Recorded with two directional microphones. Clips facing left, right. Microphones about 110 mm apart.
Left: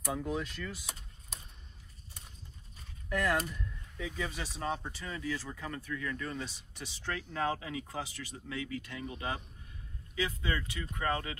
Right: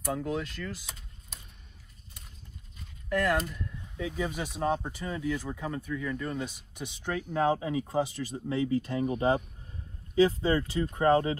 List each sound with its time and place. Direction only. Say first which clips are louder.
0.0 s speech: right 3 dB; centre (ahead or behind)
3.1 s speech: right 4 dB; centre (ahead or behind); by 11.3 s 30° right (ahead or behind)